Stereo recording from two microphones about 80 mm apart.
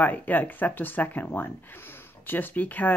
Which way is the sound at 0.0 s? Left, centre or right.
Left.